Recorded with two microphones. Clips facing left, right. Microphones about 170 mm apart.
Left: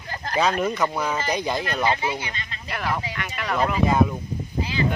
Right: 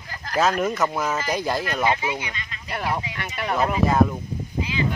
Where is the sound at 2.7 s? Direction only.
25° right (ahead or behind).